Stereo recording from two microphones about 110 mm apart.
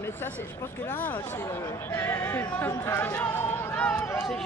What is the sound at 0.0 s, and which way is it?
Speech, 20° left (ahead or behind).